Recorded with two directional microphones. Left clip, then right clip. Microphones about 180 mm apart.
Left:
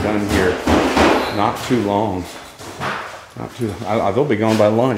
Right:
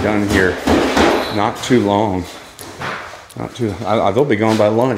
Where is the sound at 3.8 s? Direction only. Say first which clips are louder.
Right 3 dB; 15° right (ahead or behind).